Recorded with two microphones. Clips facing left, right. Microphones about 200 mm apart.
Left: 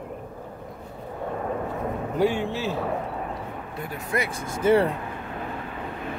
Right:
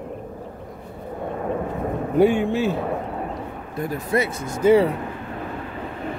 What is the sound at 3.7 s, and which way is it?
Speech, 40° right (ahead or behind).